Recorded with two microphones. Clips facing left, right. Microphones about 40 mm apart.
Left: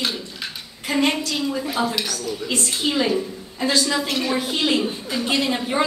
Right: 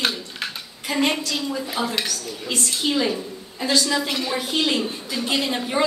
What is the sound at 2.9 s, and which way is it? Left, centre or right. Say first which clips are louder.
A woman's voice: left 2 dB; centre.